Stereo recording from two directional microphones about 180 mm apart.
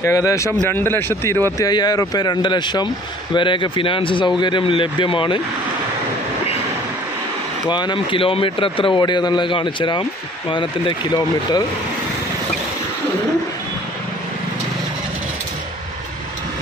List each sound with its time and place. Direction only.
0.0 s a man's voice: 15° left (ahead or behind)
7.6 s speech: 25° left (ahead or behind)